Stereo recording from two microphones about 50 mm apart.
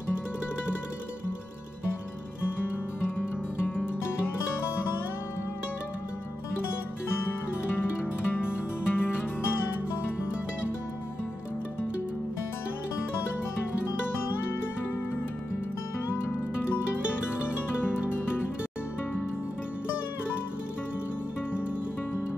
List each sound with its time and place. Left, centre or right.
3.2 s music: left
8.0 s music: left
17.7 s music: left